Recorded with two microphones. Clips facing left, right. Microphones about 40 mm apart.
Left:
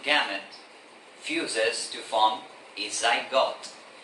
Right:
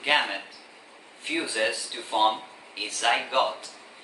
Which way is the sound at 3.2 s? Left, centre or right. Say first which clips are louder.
Left 1 dB; centre.